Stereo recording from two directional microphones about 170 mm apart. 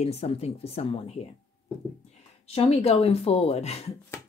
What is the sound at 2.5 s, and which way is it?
Speech, 35° left (ahead or behind).